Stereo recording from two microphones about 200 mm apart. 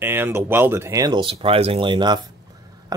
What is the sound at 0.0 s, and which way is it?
Speech, 10° right (ahead or behind).